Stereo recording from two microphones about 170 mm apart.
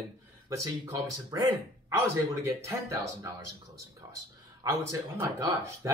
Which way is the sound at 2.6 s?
20° right (ahead or behind).